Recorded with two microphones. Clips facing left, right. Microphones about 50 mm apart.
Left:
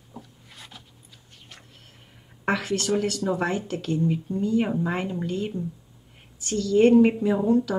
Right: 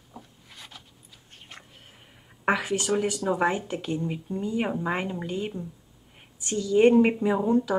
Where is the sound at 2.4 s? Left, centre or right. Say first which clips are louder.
Even; centre.